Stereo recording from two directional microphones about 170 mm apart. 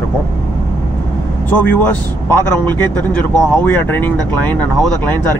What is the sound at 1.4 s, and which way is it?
A man's voice, 10° left (ahead or behind).